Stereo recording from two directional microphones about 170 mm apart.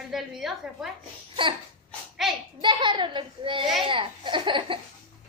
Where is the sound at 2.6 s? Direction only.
30° right (ahead or behind).